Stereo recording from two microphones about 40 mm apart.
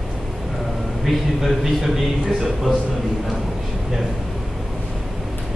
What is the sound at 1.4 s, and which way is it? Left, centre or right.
Speech, centre.